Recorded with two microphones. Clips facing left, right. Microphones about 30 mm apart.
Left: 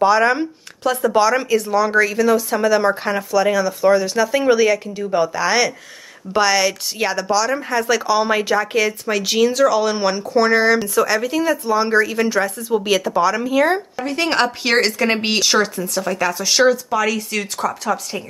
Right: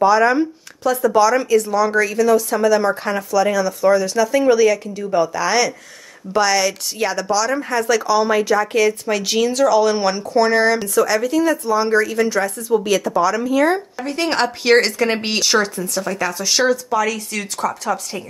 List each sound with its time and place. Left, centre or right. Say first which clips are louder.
0.0 s speech: right 1 dB; left
1.3 s speech: right 1 dB; left; by 7.8 s centre
7.8 s speech: right 2 dB; left
8.7 s speech: right 2 dB; centre